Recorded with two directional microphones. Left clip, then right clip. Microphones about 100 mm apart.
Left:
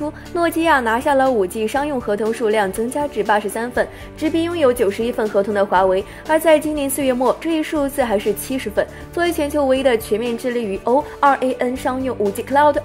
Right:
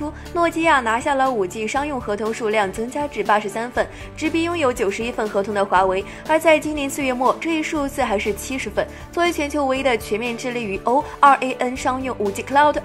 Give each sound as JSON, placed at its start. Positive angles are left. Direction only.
{"t": 0.3, "sound": "a woman's voice", "side_deg": 40}
{"t": 1.3, "sound": "a woman's voice", "side_deg": 40}